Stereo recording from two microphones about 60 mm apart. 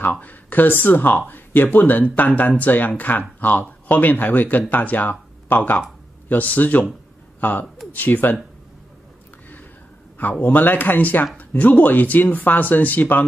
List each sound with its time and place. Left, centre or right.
0.0 s speech: left
10.4 s speech: left